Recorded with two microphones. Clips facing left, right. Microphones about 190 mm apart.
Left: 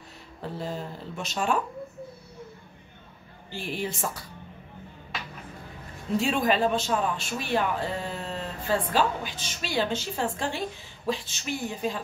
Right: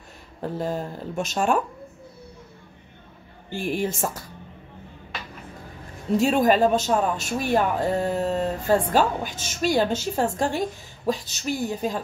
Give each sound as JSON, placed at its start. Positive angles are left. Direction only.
{"t": 0.4, "sound": "speech", "side_deg": -45}
{"t": 3.4, "sound": "speech", "side_deg": -50}
{"t": 6.1, "sound": "speech", "side_deg": -45}